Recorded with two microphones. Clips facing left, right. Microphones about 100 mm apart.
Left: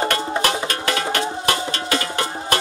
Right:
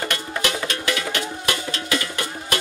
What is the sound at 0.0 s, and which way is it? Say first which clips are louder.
Music: left 5 dB; 35° left (ahead or behind).